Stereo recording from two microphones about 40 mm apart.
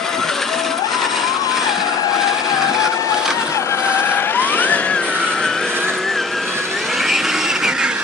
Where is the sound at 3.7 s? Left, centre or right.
Left.